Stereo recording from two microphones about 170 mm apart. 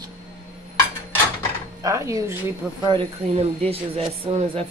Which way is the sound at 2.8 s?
30° right (ahead or behind).